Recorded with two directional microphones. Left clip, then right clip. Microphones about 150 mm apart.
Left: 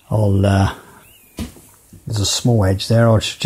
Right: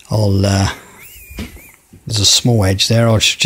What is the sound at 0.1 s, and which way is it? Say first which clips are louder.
Speech: right 1 dB; 5° right (ahead or behind).